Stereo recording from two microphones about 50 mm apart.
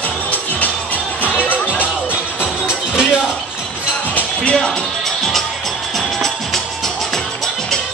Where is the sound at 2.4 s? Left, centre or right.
Centre.